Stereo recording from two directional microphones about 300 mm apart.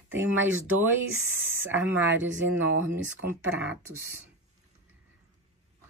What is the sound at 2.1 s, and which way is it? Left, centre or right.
Speech, right.